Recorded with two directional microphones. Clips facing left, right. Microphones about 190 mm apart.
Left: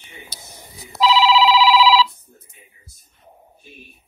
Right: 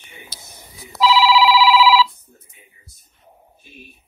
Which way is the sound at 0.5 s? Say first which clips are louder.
Left 1 dB; 20° left (ahead or behind).